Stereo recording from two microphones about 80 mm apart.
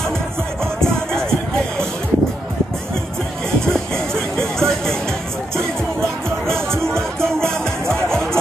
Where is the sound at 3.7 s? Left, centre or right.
Centre.